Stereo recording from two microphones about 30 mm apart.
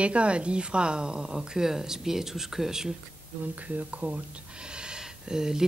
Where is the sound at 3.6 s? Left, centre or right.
Right.